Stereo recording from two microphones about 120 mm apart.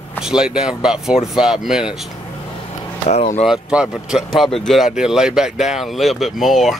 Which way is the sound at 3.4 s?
5° right (ahead or behind).